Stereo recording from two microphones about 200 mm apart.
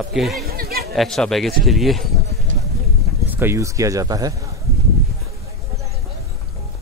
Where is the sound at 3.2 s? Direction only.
10° right (ahead or behind).